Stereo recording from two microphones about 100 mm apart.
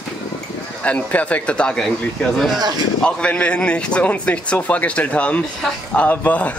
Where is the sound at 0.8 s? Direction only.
15° left (ahead or behind).